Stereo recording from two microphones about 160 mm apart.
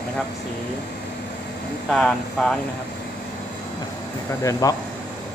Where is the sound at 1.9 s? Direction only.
5° left (ahead or behind).